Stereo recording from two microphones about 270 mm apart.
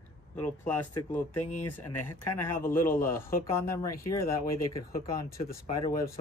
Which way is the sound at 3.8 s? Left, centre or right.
Left.